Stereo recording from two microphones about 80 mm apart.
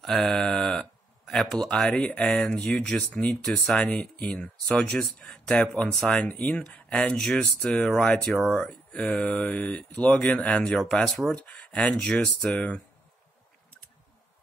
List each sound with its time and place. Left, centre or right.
0.0 s speech: centre
4.8 s speech: centre